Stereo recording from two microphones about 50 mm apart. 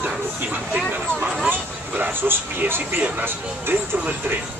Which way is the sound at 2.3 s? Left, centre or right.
Right.